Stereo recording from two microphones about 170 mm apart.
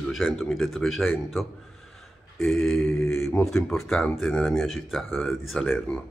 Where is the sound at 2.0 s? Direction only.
Centre (ahead or behind).